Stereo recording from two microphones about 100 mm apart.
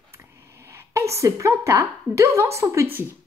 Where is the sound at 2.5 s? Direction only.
30° right (ahead or behind).